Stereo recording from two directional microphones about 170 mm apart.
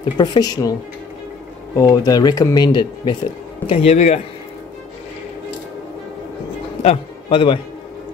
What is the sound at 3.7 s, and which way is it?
Speech, 35° left (ahead or behind).